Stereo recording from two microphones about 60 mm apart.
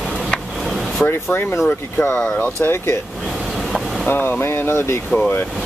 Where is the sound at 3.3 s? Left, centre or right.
Centre.